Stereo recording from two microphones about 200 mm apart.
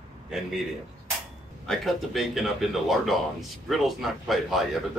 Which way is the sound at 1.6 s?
Centre (ahead or behind).